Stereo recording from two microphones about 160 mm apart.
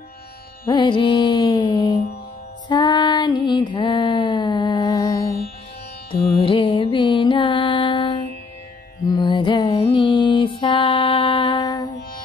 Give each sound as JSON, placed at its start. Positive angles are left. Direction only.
{"t": 0.7, "sound": "music", "side_deg": 30}
{"t": 2.7, "sound": "female singing", "side_deg": 25}
{"t": 6.3, "sound": "music", "side_deg": 35}